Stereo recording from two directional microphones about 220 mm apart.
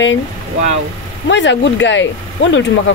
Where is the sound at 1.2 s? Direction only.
55° left (ahead or behind).